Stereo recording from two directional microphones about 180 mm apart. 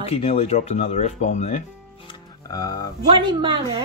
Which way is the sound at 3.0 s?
25° right (ahead or behind).